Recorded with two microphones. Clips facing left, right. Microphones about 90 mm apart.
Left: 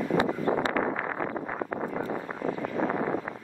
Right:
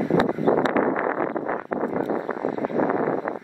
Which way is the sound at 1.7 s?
55° right (ahead or behind).